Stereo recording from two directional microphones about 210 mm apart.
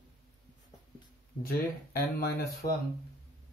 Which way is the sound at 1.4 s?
45° left (ahead or behind).